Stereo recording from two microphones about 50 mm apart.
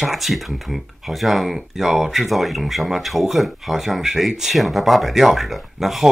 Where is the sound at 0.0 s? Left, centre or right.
Centre.